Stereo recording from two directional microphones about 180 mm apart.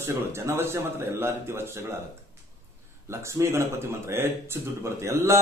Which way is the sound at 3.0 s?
15° right (ahead or behind).